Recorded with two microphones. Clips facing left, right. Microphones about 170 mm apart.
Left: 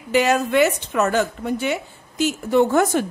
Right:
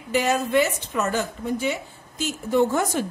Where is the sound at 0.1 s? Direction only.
75° left (ahead or behind).